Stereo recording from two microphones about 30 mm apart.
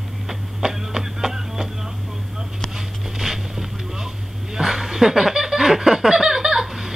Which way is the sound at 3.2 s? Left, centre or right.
Centre.